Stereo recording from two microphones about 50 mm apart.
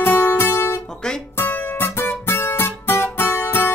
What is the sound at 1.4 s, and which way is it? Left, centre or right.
Music, left.